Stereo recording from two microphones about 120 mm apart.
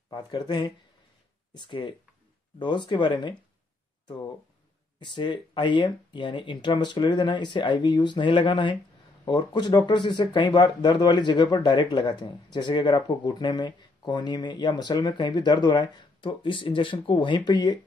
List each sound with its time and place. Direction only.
0.1 s speech: 35° left (ahead or behind)
5.0 s speech: 40° left (ahead or behind)